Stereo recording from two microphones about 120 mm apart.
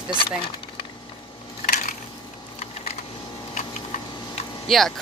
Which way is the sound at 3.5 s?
75° left (ahead or behind).